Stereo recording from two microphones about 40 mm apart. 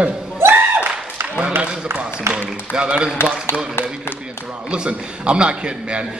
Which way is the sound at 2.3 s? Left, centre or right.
Right.